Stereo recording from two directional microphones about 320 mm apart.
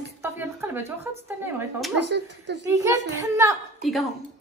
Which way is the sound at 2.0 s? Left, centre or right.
Right.